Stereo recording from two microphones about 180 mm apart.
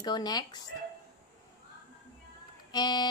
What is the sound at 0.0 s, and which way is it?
Speech, 20° left (ahead or behind).